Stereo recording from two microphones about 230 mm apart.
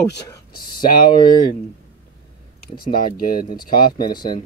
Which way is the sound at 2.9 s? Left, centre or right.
Left.